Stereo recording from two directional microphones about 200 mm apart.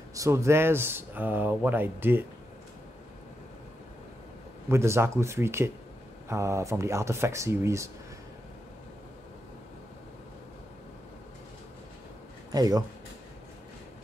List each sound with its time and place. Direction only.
0.1 s speech: 15° right (ahead or behind)
4.6 s speech: 15° right (ahead or behind)
12.4 s speech: 20° right (ahead or behind)